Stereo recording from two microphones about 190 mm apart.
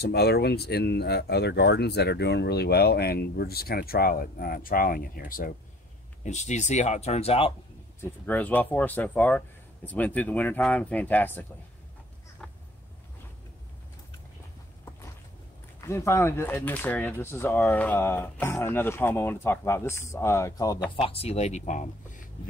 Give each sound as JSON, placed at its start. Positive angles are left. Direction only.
{"t": 0.0, "sound": "speech", "side_deg": 55}
{"t": 8.0, "sound": "speech", "side_deg": 10}
{"t": 15.8, "sound": "speech", "side_deg": 15}
{"t": 20.9, "sound": "speech", "side_deg": 30}